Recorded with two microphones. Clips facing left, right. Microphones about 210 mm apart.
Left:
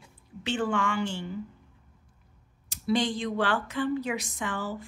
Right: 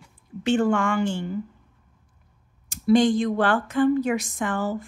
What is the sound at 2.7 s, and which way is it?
Speech, 50° right (ahead or behind).